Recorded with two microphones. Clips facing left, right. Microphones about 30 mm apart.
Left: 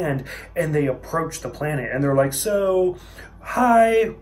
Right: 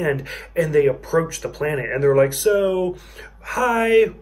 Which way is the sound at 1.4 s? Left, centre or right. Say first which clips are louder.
Right 3 dB; right.